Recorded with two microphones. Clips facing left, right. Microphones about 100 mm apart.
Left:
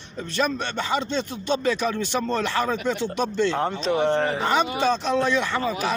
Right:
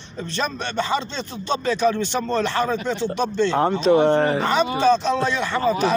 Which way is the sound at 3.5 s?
20° right (ahead or behind).